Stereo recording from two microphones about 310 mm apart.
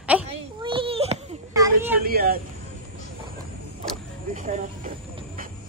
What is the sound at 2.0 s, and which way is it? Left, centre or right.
Speech, right.